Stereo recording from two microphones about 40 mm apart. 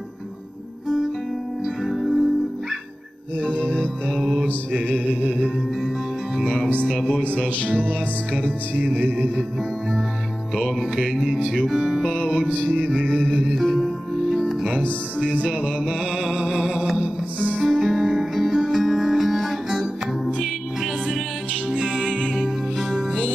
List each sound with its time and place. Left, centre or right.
1.9 s music: centre
3.3 s music: right
4.1 s music: centre
4.7 s music: right
5.2 s music: left
8.7 s music: right
10.5 s music: centre
12.6 s music: right
13.6 s music: centre
15.8 s music: centre
21.8 s music: centre
22.3 s music: centre